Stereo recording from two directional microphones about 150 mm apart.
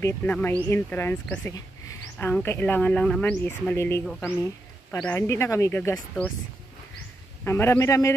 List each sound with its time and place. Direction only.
0.0 s speech: 10° left (ahead or behind)
4.0 s speech: centre (ahead or behind)
5.0 s speech: 15° left (ahead or behind)
7.4 s speech: 15° left (ahead or behind)